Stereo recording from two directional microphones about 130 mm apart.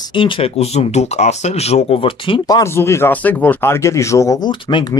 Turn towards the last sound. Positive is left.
turn(degrees=40)  # may be behind; listen again after turning